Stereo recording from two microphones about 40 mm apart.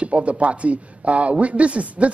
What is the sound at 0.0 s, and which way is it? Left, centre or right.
A man's voice, right.